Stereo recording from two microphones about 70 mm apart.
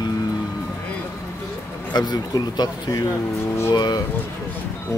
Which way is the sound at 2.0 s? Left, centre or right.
Left.